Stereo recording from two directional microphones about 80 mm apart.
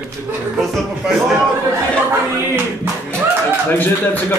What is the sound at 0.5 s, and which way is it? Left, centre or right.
Speech, centre.